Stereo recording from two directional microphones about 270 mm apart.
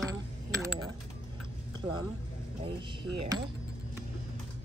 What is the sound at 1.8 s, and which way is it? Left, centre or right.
Speech, centre.